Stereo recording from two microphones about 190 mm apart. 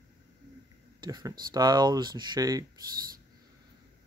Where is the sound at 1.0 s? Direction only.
20° right (ahead or behind).